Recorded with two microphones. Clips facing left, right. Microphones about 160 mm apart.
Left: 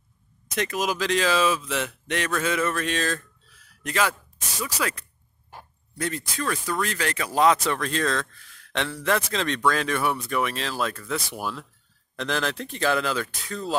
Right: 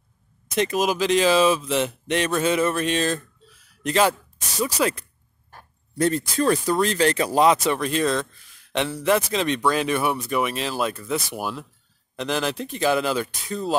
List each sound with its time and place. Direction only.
0.6 s speech: 25° right (ahead or behind)
7.3 s a man's voice: 20° right (ahead or behind)